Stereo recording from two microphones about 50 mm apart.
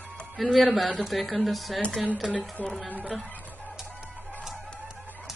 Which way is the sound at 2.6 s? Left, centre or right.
Left.